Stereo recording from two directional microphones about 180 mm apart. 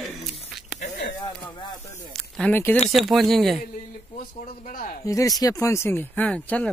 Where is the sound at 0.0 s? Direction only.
Centre (ahead or behind).